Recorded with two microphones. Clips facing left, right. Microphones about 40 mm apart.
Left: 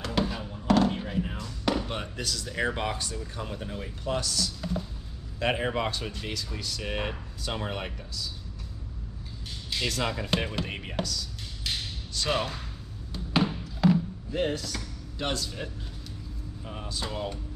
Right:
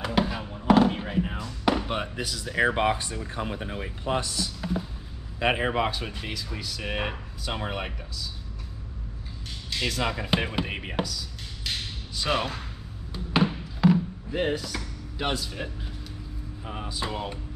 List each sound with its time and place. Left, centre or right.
0.0 s a sound: centre
5.4 s speech: centre
9.8 s speech: centre
13.1 s basketball bounce: centre
16.6 s speech: centre